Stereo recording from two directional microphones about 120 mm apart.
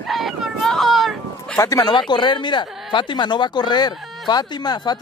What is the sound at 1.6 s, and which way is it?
Speech, 30° left (ahead or behind).